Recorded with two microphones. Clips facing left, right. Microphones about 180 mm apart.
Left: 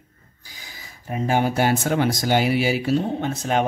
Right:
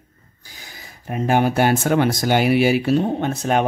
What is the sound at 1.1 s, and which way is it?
Speech, 60° right (ahead or behind).